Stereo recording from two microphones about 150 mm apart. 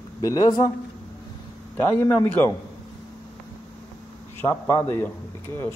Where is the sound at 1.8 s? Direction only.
15° left (ahead or behind).